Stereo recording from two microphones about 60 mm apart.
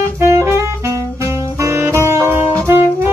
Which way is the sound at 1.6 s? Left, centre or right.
Right.